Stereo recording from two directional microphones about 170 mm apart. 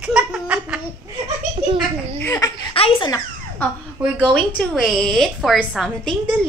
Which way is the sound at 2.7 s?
30° left (ahead or behind).